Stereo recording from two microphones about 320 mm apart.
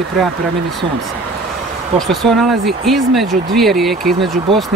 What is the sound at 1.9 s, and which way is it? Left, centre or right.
Speech, centre.